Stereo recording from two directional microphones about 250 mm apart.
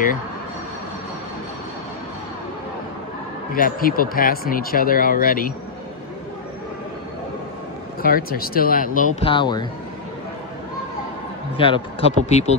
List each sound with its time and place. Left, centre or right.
3.5 s speech: left
8.0 s speech: left; by 9.7 s centre
11.5 s speech: left